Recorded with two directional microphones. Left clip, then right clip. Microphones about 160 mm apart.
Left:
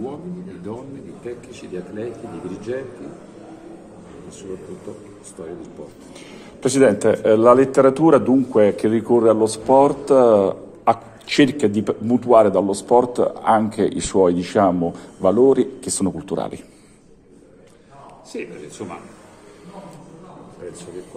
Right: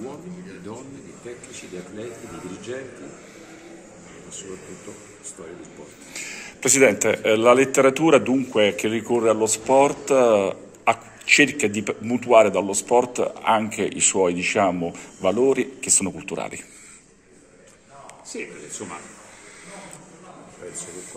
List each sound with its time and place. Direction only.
6.1 s speech: 15° left (ahead or behind)
12.6 s speech: 15° right (ahead or behind)
14.2 s speech: 20° left (ahead or behind)